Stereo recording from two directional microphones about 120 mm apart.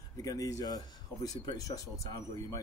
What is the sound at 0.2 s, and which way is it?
Speech, 30° left (ahead or behind).